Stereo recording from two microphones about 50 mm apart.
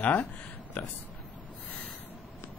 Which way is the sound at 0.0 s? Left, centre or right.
Left.